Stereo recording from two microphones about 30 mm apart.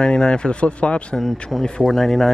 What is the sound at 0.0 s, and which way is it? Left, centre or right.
Speech, left.